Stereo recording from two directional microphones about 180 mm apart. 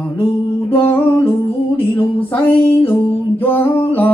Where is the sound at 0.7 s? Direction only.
10° left (ahead or behind).